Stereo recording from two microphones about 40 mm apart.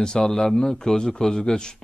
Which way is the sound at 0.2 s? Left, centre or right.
Centre.